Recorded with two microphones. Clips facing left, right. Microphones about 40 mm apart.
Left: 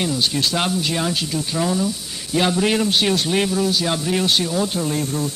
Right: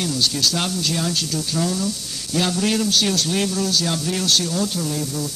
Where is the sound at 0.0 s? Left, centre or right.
Left.